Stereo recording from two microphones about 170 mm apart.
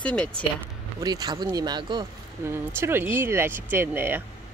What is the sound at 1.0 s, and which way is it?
Speech, 25° right (ahead or behind).